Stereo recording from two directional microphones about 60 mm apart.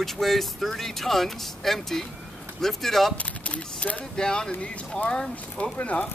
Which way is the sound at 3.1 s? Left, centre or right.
Left.